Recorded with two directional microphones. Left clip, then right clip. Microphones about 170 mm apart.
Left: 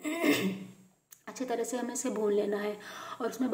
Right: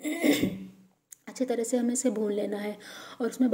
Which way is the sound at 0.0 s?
40° right (ahead or behind).